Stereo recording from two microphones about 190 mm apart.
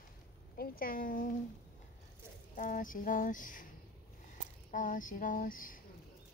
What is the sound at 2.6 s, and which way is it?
Speech, 45° left (ahead or behind).